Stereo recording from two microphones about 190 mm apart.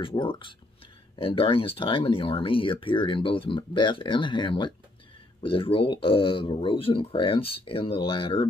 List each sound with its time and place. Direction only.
0.0 s speech: 25° left (ahead or behind)